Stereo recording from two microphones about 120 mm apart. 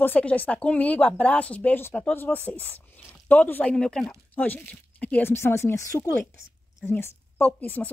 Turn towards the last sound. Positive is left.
turn(degrees=15)  # may be behind; listen again after turning